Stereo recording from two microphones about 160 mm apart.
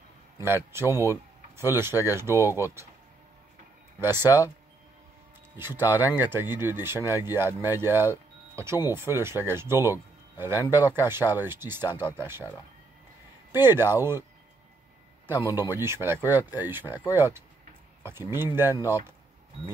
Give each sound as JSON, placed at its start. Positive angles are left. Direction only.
{"t": 0.4, "sound": "speech", "side_deg": -15}
{"t": 0.9, "sound": "speech", "side_deg": 20}
{"t": 1.6, "sound": "speech", "side_deg": -15}
{"t": 4.0, "sound": "speech", "side_deg": -15}
{"t": 5.6, "sound": "speech", "side_deg": -15}
{"t": 13.5, "sound": "speech", "side_deg": -15}
{"t": 15.5, "sound": "speech", "side_deg": 25}
{"t": 15.8, "sound": "speech", "side_deg": -15}